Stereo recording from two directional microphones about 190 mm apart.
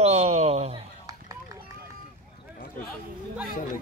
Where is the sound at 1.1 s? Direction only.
15° right (ahead or behind).